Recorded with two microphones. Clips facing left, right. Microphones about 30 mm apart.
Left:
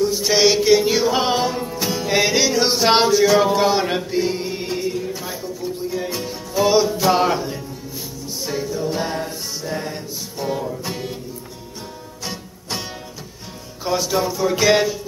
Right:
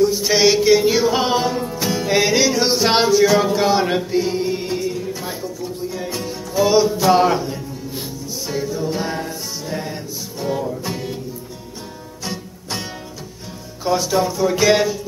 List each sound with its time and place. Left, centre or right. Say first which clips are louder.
0.0 s music: right 2 dB; centre
13.8 s speech: right 2 dB; centre